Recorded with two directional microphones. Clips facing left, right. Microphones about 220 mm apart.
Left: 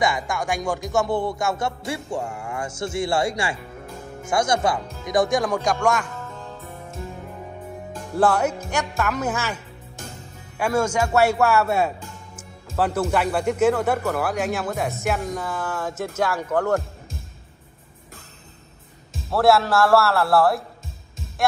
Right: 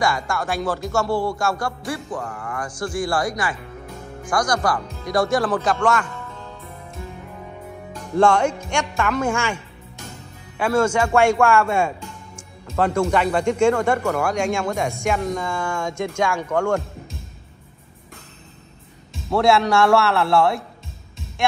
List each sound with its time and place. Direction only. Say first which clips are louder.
0.0 s music: right 1 dB; 20° left (ahead or behind)
5.0 s speech: even; 15° left (ahead or behind)
8.2 s speech: right 3 dB; 5° left (ahead or behind)
10.6 s speech: right 3 dB; 10° left (ahead or behind)
19.3 s speech: right 1 dB; centre (ahead or behind)